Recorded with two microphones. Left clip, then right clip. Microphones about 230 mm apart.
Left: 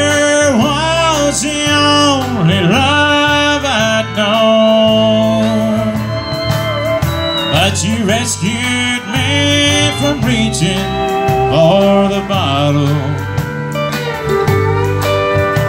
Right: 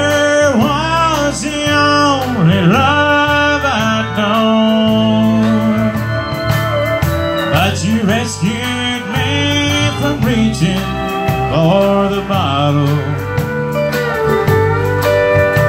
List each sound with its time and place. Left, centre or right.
0.0 s music: left
7.5 s music: left
9.4 s music: left